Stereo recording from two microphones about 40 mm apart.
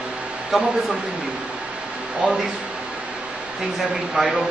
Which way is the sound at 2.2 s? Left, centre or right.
Right.